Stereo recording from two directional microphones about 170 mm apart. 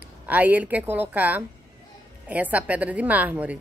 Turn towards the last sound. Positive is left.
turn(degrees=-10)  # may be behind; listen again after turning